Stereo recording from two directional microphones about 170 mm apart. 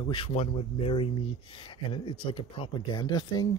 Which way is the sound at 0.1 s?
35° left (ahead or behind).